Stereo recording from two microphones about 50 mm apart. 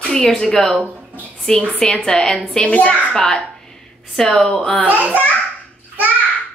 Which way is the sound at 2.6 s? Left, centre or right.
Left.